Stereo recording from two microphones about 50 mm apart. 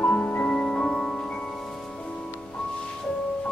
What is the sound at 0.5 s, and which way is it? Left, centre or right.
Music, centre.